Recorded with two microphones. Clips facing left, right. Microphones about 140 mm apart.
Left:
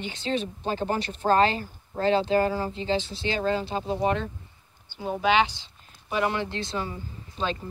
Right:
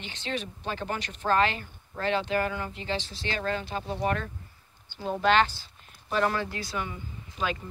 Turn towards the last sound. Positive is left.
turn(degrees=30)  # may be behind; listen again after turning